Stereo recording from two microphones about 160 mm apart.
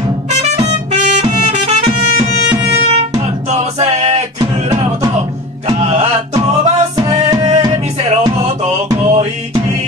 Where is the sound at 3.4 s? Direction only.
45° right (ahead or behind).